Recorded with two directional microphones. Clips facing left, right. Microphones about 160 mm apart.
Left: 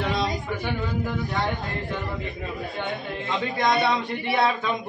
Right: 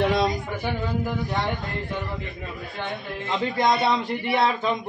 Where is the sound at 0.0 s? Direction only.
55° right (ahead or behind).